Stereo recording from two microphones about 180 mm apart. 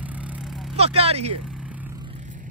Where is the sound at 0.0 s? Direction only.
10° right (ahead or behind).